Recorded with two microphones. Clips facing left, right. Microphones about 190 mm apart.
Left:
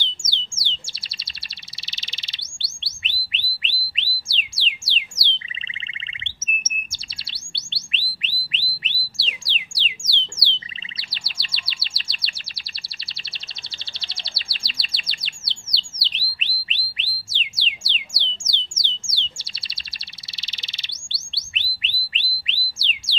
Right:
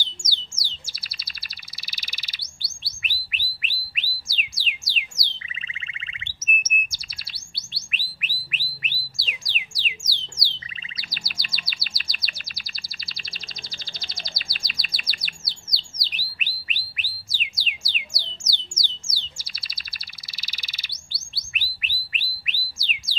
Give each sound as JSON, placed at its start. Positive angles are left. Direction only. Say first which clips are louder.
{"t": 0.1, "sound": "bird", "louder": "left 1 dB", "side_deg": 25}
{"t": 8.2, "sound": "music", "louder": "left 1 dB", "side_deg": 25}
{"t": 10.4, "sound": "chirp", "louder": "left 3 dB", "side_deg": 30}
{"t": 13.9, "sound": "chirp", "louder": "right 2 dB", "side_deg": 30}
{"t": 16.2, "sound": "a sound", "louder": "left 1 dB", "side_deg": 25}
{"t": 20.3, "sound": "bird", "louder": "even", "side_deg": 25}